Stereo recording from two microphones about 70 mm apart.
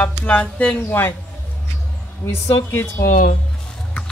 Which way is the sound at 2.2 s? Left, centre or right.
Left.